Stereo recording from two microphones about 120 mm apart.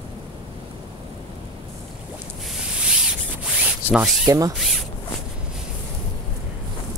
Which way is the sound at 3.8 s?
20° left (ahead or behind).